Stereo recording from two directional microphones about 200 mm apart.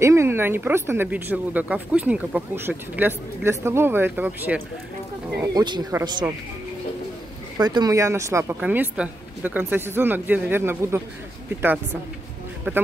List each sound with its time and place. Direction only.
0.0 s speech: 15° right (ahead or behind)
5.4 s speech: 20° right (ahead or behind)
7.5 s speech: 20° right (ahead or behind)
12.7 s speech: 10° right (ahead or behind)